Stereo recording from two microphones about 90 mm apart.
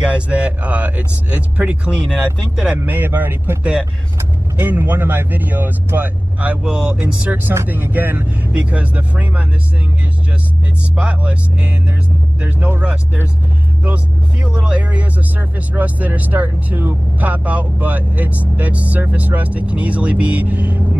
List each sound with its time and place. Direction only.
0.0 s speech: 15° right (ahead or behind)
2.8 s speech: 25° right (ahead or behind)
11.0 s speech: 15° right (ahead or behind)